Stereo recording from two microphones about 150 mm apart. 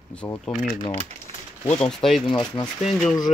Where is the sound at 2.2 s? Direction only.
30° left (ahead or behind).